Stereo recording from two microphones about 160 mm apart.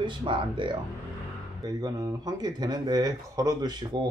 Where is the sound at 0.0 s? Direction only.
30° right (ahead or behind).